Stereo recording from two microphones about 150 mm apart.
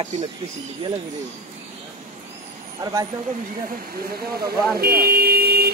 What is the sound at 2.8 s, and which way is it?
Speech, 30° right (ahead or behind).